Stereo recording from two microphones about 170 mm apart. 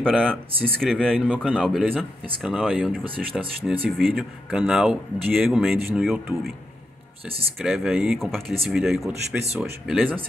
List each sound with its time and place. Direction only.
0.0 s speech: 5° left (ahead or behind)
0.5 s speech: 35° right (ahead or behind)
0.7 s speech: 5° left (ahead or behind)
7.5 s speech: centre (ahead or behind)